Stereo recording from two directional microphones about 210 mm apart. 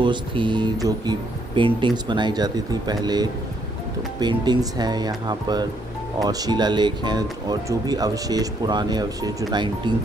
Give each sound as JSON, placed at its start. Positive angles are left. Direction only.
{"t": 0.0, "sound": "speech", "side_deg": -25}